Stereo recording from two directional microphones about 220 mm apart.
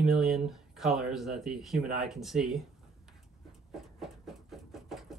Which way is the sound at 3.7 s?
Centre (ahead or behind).